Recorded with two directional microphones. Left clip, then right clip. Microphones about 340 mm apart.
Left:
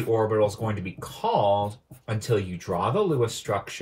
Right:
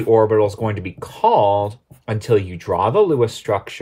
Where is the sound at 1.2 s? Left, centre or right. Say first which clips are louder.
Right 8 dB; right.